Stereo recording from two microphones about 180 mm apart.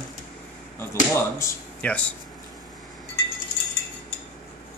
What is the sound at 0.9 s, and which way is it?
A man's voice, 15° left (ahead or behind).